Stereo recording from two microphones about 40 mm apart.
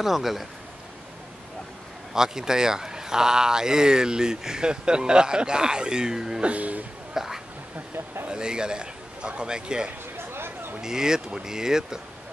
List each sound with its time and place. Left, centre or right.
0.0 s speech: centre
2.1 s speech: centre
6.4 s speech: right
7.2 s a sound: centre
8.3 s a man's voice: right
10.1 s a sound: right
10.8 s speech: centre